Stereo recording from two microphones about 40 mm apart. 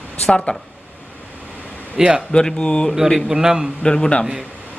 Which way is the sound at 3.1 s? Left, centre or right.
Centre.